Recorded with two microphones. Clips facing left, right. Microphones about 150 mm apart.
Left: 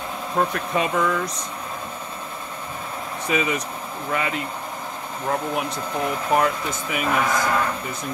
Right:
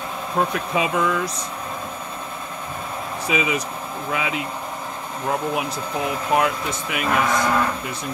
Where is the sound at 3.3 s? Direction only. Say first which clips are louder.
Even; 5° right (ahead or behind).